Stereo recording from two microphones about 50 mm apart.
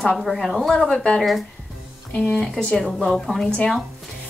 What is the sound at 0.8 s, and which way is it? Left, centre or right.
Speech, centre.